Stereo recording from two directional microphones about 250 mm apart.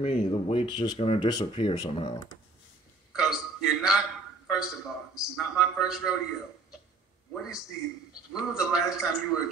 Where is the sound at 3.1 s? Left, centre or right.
Centre.